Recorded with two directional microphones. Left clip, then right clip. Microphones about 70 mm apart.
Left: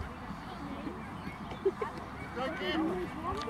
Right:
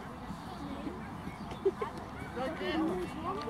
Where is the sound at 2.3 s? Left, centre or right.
Left.